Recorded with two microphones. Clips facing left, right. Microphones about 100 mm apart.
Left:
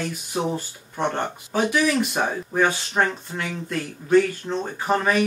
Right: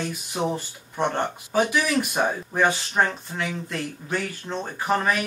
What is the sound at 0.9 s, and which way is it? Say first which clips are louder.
Speech: even; centre (ahead or behind).